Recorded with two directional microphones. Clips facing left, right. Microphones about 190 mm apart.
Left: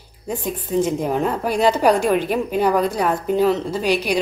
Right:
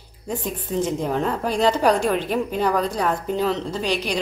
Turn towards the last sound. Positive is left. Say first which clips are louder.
# left 4 dB
turn(degrees=10)  # may be behind; listen again after turning